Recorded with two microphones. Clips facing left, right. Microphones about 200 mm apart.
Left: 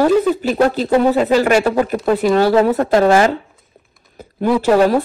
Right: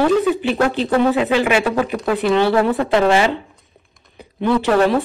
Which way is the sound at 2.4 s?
10° left (ahead or behind).